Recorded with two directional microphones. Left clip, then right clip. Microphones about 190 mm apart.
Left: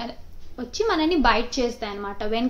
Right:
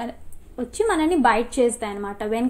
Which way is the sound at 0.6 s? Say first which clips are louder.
Right 2 dB; 15° right (ahead or behind).